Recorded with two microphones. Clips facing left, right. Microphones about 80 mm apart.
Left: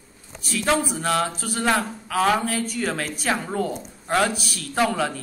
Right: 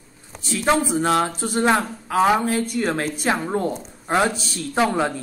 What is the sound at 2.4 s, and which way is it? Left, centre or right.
A woman's voice, right.